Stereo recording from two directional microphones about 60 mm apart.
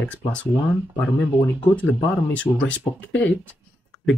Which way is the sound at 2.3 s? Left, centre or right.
Left.